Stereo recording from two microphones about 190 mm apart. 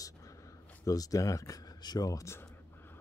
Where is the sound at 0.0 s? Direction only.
15° left (ahead or behind).